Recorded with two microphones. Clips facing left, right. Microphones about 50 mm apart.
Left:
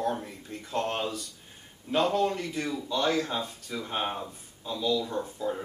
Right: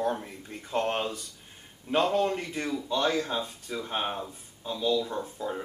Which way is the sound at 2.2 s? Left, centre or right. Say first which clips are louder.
Even; right.